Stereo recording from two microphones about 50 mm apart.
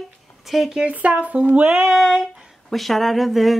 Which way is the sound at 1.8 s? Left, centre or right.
Centre.